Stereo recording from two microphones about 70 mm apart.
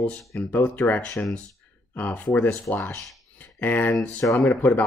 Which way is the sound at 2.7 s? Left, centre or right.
Left.